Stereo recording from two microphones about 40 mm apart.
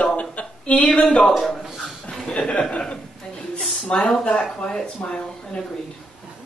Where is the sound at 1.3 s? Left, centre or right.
Centre.